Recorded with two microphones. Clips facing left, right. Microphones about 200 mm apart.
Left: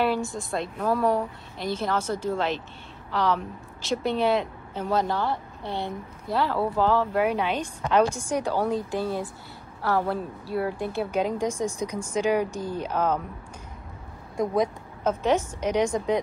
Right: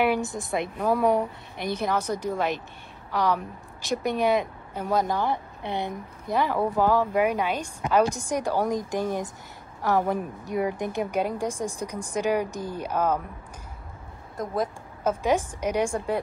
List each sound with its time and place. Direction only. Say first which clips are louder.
0.0 s speech: right 1 dB; 15° right (ahead or behind)
14.3 s speech: left 4 dB; centre (ahead or behind)